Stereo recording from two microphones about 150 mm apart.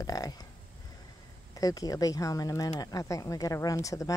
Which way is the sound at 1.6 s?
25° left (ahead or behind).